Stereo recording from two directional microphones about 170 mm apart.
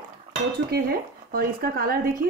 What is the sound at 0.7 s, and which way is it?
A woman's voice, 65° right (ahead or behind).